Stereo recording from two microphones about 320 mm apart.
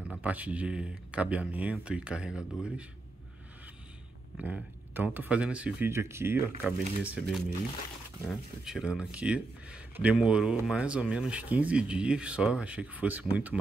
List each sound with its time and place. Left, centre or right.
0.2 s speech: centre
4.4 s speech: centre